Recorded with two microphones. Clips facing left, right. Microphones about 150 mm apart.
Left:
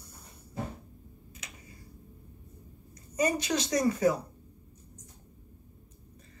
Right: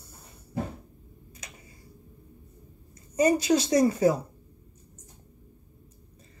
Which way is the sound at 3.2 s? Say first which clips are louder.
Right 6 dB; 30° right (ahead or behind).